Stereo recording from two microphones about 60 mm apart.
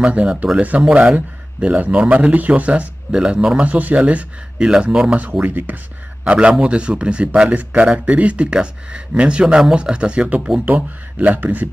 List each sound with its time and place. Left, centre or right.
0.0 s speech: right
5.1 s a man's voice: right